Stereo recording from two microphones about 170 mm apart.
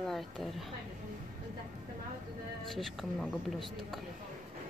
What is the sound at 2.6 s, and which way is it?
A woman's voice, centre (ahead or behind).